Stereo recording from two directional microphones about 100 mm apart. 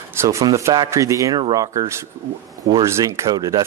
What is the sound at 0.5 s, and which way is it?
Speech, 30° right (ahead or behind).